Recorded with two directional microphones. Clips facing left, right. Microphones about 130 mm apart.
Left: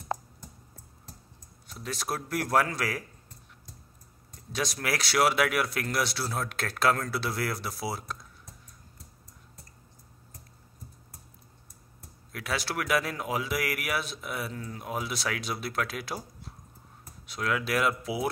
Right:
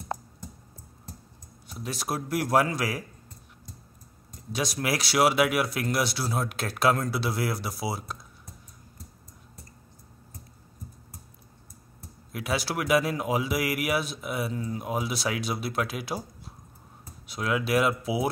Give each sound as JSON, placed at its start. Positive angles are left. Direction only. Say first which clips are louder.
{"t": 1.7, "sound": "a man's voice", "louder": "right 2 dB", "side_deg": -10}
{"t": 4.5, "sound": "a man's voice", "louder": "right 3 dB", "side_deg": -10}
{"t": 12.3, "sound": "a man's voice", "louder": "right 3 dB", "side_deg": -15}
{"t": 17.3, "sound": "a man's voice", "louder": "right 3 dB", "side_deg": -15}